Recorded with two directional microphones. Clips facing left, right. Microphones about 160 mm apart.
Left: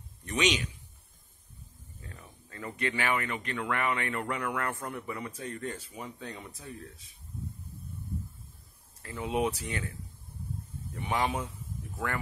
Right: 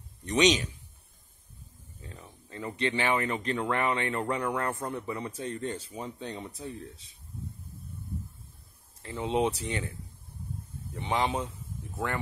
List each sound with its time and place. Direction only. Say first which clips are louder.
0.2 s a sound: right 6 dB; 25° right (ahead or behind)
2.0 s speech: right 2 dB; 20° right (ahead or behind)
9.0 s speech: right 2 dB; 25° right (ahead or behind)
11.0 s speech: right 2 dB; 25° right (ahead or behind)